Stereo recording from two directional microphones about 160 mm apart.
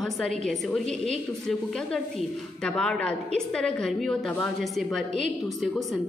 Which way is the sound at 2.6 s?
5° left (ahead or behind).